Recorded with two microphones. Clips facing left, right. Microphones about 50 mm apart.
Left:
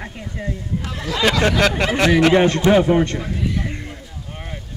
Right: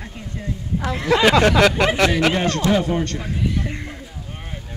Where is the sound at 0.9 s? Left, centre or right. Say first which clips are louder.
Right 9 dB; right.